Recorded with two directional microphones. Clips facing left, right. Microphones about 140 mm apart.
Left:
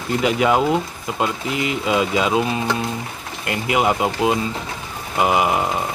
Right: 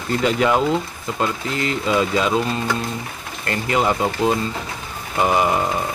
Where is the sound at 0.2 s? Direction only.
10° left (ahead or behind).